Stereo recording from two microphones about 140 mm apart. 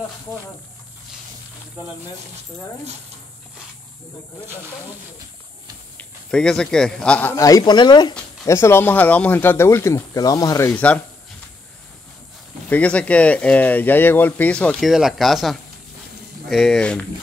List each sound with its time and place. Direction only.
5.9 s a man's voice: 5° left (ahead or behind)
7.3 s speech: 25° left (ahead or behind)
8.5 s speech: 15° left (ahead or behind)
10.7 s speech: 10° left (ahead or behind)
12.6 s speech: 10° left (ahead or behind)